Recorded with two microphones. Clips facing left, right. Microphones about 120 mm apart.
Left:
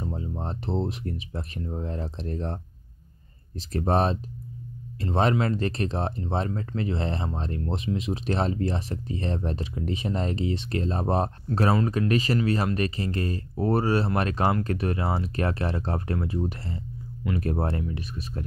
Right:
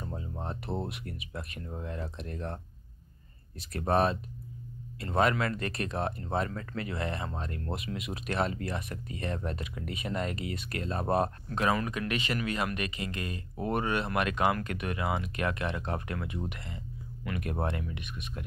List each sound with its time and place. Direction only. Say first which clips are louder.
0.0 s music: left 6 dB; 25° left (ahead or behind)
0.4 s speech: left 5 dB; 30° left (ahead or behind)